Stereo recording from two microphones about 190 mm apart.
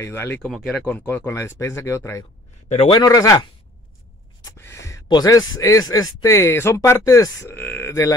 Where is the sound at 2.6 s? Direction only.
35° left (ahead or behind).